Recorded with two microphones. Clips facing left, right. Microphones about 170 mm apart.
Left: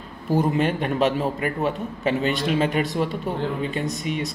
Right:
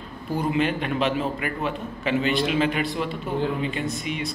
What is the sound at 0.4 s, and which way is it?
A man's voice, 45° left (ahead or behind).